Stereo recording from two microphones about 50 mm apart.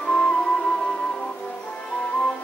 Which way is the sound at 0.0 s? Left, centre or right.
Left.